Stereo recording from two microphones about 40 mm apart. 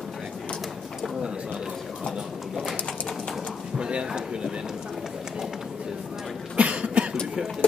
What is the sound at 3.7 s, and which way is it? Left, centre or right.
Speech, right.